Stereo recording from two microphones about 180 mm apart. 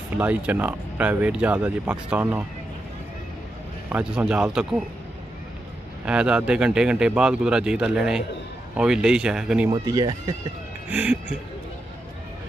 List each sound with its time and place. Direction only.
0.1 s speech: 10° right (ahead or behind)
3.9 s speech: 5° right (ahead or behind)
6.0 s speech: 5° right (ahead or behind)
9.7 s speech: 20° right (ahead or behind)
10.9 s speech: 10° right (ahead or behind)